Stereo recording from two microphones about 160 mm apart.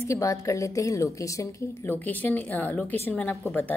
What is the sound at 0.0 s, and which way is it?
A woman's voice, 20° left (ahead or behind).